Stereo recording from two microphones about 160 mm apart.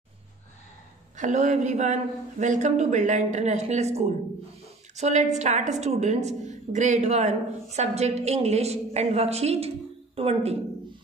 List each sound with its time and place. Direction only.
1.1 s a woman's voice: 50° right (ahead or behind)